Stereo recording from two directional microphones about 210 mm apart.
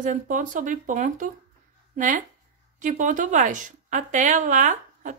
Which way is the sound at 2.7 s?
35° right (ahead or behind).